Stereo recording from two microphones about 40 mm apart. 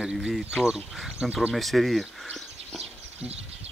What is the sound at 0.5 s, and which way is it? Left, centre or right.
Speech, right.